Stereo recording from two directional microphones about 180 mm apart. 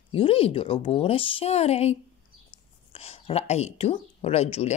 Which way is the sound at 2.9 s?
35° left (ahead or behind).